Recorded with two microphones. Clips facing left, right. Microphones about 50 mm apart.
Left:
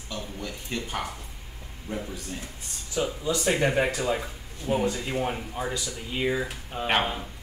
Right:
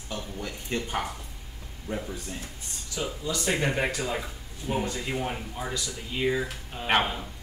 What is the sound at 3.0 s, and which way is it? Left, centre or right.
Speech, centre.